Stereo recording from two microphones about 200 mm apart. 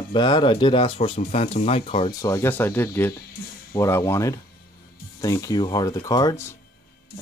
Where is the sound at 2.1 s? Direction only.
15° left (ahead or behind).